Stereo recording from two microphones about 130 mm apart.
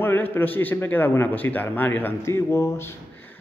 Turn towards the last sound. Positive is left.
turn(degrees=15)  # may be behind; listen again after turning